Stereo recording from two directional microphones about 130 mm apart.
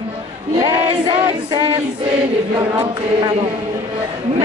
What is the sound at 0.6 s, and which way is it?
Music, 35° right (ahead or behind).